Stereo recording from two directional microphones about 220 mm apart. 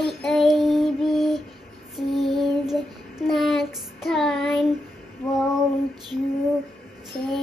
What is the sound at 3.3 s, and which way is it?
Child singing, centre (ahead or behind).